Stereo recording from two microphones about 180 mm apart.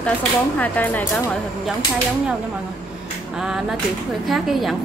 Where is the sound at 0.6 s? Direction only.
10° left (ahead or behind).